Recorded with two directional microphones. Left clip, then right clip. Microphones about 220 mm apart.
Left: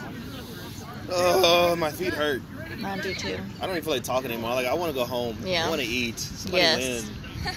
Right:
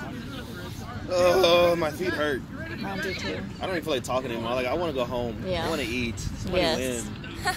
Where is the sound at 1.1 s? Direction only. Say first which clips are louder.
Even; 25° left (ahead or behind).